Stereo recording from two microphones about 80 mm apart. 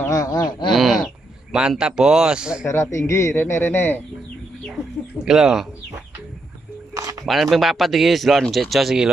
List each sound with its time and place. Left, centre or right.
0.1 s bird: left
0.7 s a sound: centre
1.5 s a man's voice: centre
2.6 s a man's voice: left
5.2 s a man's voice: centre
6.9 s a sound: right
7.2 s speech: centre